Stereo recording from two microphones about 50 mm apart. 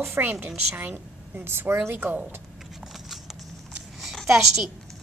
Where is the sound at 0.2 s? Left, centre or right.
Right.